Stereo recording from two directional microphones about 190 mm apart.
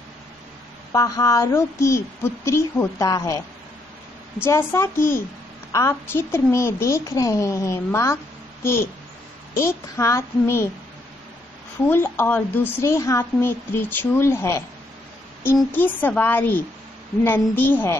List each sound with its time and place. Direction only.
0.9 s a woman's voice: 20° left (ahead or behind)
4.5 s a woman's voice: 15° left (ahead or behind)
9.9 s a woman's voice: 15° left (ahead or behind)
11.9 s a woman's voice: 10° left (ahead or behind)